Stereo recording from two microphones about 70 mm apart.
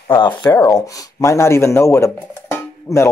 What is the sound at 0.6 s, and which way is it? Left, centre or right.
Speech, left.